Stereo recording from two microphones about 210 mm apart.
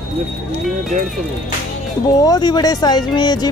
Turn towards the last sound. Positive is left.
turn(degrees=20)  # may be behind; listen again after turning